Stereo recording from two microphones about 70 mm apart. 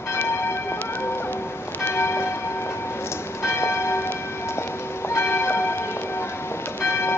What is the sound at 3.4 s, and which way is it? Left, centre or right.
Church bell, left.